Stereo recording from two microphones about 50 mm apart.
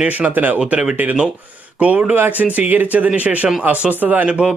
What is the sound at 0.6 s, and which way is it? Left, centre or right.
Speech, centre.